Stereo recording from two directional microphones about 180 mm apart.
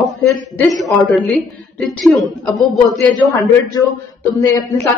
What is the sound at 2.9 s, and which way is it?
A man's voice, 20° left (ahead or behind).